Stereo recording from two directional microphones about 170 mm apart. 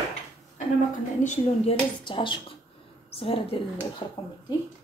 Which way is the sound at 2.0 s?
30° left (ahead or behind).